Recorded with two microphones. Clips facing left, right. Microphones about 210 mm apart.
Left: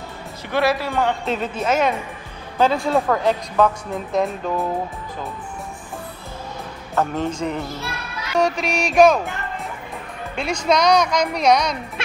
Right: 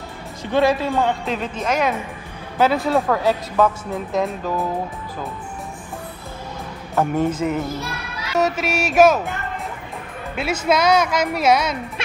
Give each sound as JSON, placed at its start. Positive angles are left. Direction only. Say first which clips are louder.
{"t": 0.5, "sound": "speech", "louder": "right 3 dB", "side_deg": -20}
{"t": 1.2, "sound": "speech", "louder": "left 1 dB", "side_deg": 0}
{"t": 7.0, "sound": "speech", "louder": "right 3 dB", "side_deg": -10}
{"t": 10.3, "sound": "speech", "louder": "even", "side_deg": -5}